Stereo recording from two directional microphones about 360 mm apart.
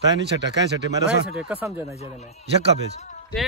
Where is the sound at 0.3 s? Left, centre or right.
Right.